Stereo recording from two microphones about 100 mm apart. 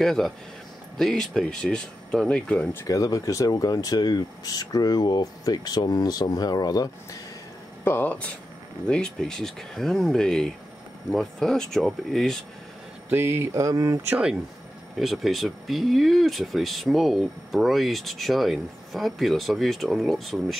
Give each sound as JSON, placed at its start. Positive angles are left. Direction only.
{"t": 0.0, "sound": "speech", "side_deg": 5}
{"t": 2.8, "sound": "speech", "side_deg": 35}
{"t": 7.8, "sound": "speech", "side_deg": 20}
{"t": 13.1, "sound": "speech", "side_deg": -25}
{"t": 15.0, "sound": "speech", "side_deg": 0}